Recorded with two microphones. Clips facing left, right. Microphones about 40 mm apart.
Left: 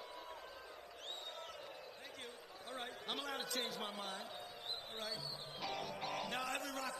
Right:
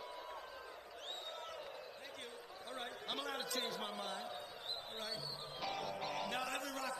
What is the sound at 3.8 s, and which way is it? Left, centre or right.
Speech, right.